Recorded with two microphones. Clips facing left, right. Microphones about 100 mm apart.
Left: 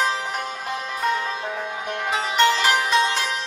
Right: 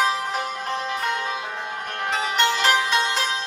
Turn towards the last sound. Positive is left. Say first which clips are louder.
# left 1 dB
turn(degrees=0)  # may be behind; listen again after turning